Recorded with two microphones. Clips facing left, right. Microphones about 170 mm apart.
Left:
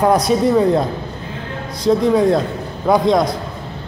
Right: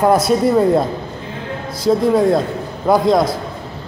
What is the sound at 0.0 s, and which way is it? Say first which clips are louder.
Speech: right 1 dB; 5° right (ahead or behind).